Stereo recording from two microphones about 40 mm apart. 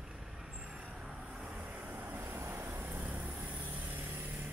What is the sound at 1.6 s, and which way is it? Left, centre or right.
Vehicle, right.